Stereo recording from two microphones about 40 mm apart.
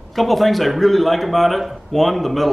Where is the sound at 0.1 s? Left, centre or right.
Centre.